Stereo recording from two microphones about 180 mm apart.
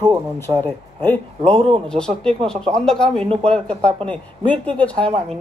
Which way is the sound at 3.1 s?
35° right (ahead or behind).